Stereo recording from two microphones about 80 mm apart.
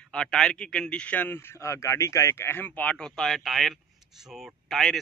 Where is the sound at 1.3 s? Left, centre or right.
Left; by 4.9 s centre.